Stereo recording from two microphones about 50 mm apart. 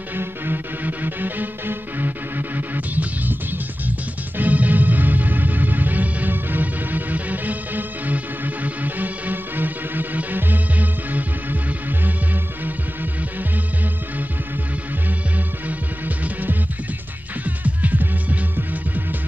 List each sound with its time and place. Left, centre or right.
0.1 s music: right
4.4 s music: right
17.6 s music: right